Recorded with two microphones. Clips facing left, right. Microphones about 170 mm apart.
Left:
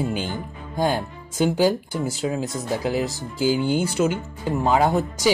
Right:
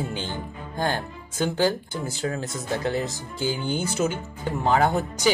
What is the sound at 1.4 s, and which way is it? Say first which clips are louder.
Speech: left 4 dB; 10° left (ahead or behind).